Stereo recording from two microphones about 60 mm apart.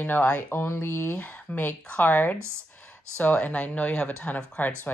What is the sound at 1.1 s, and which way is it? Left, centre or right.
A woman's voice, left.